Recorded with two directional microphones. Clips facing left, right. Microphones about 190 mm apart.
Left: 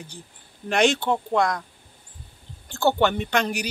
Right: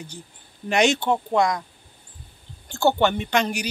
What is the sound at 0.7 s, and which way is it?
Speech, centre (ahead or behind).